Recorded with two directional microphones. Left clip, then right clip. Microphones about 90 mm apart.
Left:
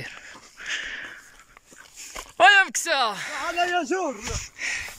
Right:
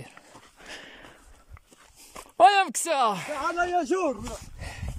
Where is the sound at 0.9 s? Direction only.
35° right (ahead or behind).